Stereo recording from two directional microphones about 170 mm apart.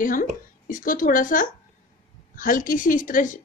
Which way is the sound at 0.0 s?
50° left (ahead or behind).